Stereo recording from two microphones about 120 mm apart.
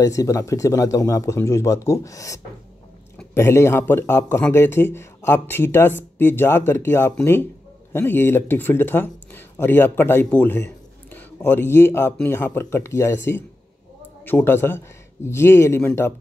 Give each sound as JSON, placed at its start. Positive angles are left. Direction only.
{"t": 0.0, "sound": "speech", "side_deg": 30}